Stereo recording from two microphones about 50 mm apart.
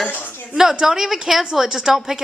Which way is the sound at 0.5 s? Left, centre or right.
Centre.